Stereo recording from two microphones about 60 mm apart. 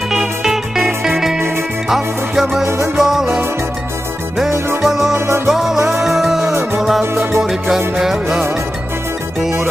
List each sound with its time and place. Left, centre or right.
0.1 s music: centre
4.8 s music: centre
5.1 s music: right
5.5 s music: centre